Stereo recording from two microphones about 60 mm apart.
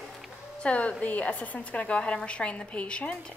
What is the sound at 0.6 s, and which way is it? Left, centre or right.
A woman's voice, centre.